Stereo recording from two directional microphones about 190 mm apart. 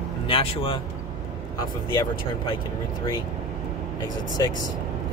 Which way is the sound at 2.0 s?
25° left (ahead or behind).